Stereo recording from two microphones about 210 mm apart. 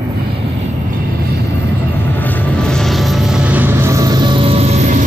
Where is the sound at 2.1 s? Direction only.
10° left (ahead or behind).